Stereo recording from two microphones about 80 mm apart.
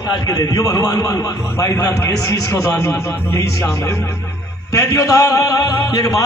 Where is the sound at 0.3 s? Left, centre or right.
Left.